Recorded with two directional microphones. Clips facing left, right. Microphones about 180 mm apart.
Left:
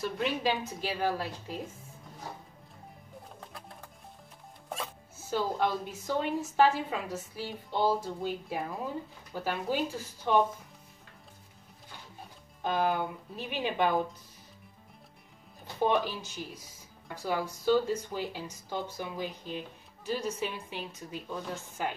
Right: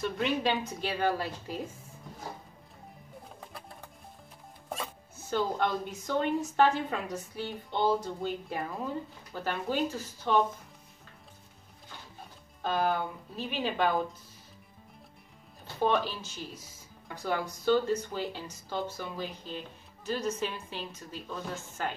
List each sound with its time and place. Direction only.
0.0 s speech: 5° left (ahead or behind)
3.3 s music: centre (ahead or behind)
4.6 s speech: centre (ahead or behind)
12.6 s a woman's voice: 15° left (ahead or behind)
15.6 s a woman's voice: 15° left (ahead or behind)